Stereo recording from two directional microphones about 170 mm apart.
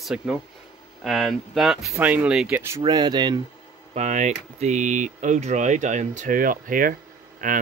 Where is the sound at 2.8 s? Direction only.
25° right (ahead or behind).